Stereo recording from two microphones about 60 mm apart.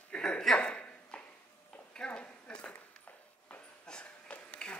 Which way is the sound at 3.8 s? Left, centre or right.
Centre.